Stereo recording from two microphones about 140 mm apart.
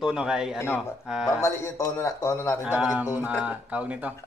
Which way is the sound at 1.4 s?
20° left (ahead or behind).